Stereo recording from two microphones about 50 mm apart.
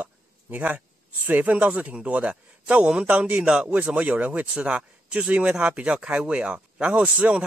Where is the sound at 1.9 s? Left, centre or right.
Right.